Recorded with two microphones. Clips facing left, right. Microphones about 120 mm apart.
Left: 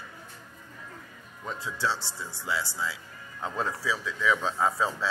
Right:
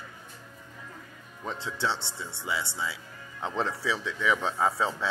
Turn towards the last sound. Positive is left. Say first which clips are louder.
# even
turn(degrees=-20)  # may be behind; listen again after turning